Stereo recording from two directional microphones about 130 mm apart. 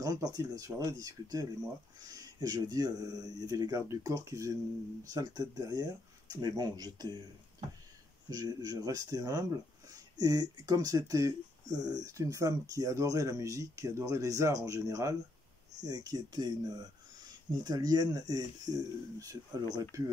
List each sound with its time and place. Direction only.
0.0 s speech: 30° right (ahead or behind)
8.3 s speech: 30° right (ahead or behind)